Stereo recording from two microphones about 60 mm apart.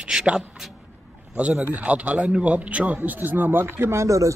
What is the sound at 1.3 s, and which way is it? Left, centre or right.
A man's voice, right.